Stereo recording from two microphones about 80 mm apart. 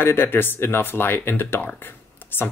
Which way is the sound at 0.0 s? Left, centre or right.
Left.